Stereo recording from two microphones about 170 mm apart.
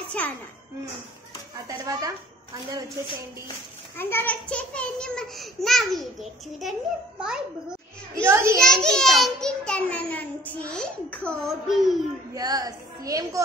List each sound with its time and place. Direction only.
1.7 s a woman's voice: 20° right (ahead or behind)
4.0 s a child's voice: 10° left (ahead or behind); by 7.4 s 5° right (ahead or behind)
8.3 s a child's voice: 15° right (ahead or behind)
8.6 s a child's voice: 5° left (ahead or behind)
12.4 s a woman's voice: 20° right (ahead or behind)